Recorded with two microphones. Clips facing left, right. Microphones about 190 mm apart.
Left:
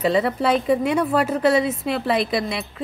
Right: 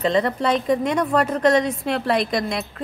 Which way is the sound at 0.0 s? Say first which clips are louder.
Left 1 dB; 5° left (ahead or behind).